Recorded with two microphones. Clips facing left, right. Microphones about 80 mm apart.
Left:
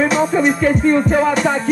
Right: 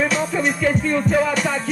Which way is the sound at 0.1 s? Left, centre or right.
Left.